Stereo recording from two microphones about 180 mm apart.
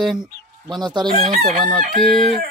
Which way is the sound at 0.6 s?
25° right (ahead or behind).